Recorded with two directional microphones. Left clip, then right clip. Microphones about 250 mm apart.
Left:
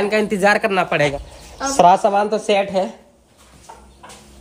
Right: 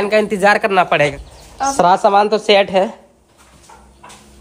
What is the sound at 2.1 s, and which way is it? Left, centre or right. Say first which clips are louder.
Speech: right 5 dB; right.